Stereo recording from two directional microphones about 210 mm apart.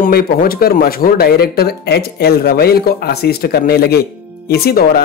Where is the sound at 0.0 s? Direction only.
45° left (ahead or behind).